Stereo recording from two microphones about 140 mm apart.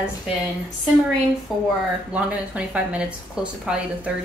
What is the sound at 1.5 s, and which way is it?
Speech, centre (ahead or behind).